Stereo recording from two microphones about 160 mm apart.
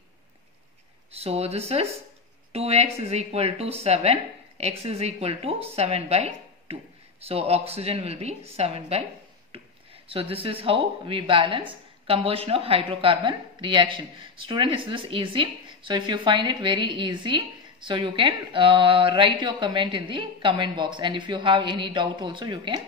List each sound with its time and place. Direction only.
1.1 s a woman's voice: 40° right (ahead or behind)
10.3 s a woman's voice: 35° right (ahead or behind)